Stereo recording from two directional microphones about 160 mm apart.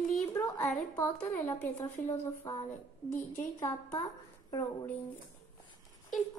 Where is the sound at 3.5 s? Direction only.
20° left (ahead or behind).